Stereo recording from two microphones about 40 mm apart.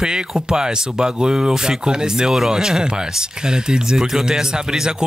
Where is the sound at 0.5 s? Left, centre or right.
Centre.